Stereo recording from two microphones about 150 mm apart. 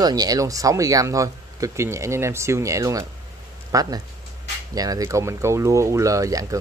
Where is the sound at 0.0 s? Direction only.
25° right (ahead or behind).